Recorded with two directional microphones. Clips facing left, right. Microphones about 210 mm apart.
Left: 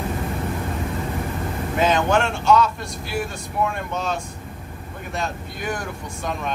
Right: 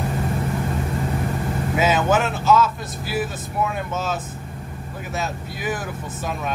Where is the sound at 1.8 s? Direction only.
5° right (ahead or behind).